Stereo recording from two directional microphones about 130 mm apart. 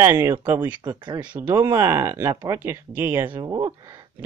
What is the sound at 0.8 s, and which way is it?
Speech, 35° right (ahead or behind).